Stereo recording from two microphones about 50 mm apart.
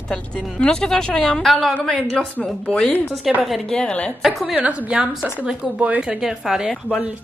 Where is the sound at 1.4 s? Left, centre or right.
Centre.